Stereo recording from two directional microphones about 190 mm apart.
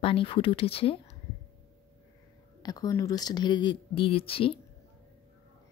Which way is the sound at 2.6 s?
20° left (ahead or behind).